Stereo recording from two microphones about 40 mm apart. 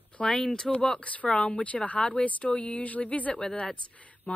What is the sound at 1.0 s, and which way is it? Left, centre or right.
Speech, left.